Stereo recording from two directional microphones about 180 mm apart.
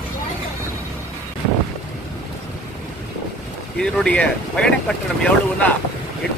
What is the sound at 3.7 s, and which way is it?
Speech, 5° left (ahead or behind).